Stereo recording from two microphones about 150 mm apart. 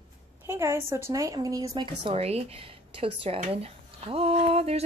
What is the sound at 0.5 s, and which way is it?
Speech, 15° right (ahead or behind).